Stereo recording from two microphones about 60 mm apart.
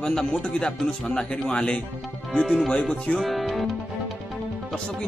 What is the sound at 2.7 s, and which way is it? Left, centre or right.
Speech, centre.